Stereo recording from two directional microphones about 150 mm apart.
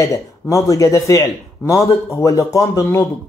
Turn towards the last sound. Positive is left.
turn(degrees=20)  # may be behind; listen again after turning